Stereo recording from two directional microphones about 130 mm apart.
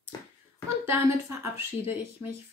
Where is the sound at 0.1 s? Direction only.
30° left (ahead or behind).